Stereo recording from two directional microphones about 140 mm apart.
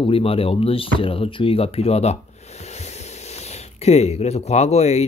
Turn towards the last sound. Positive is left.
turn(degrees=50)  # may be behind; listen again after turning